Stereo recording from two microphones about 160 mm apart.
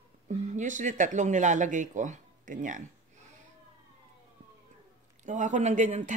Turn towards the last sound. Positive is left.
turn(degrees=-50)  # may be behind; listen again after turning